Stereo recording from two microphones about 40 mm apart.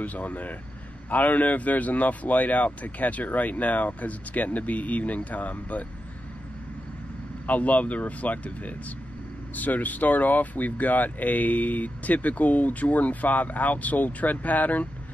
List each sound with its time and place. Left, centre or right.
0.0 s speech: left
7.4 s speech: left